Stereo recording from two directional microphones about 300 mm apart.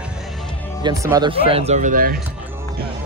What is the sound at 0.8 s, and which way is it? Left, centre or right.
Speech, centre.